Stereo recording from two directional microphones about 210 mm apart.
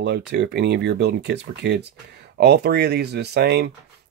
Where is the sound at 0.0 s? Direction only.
55° right (ahead or behind).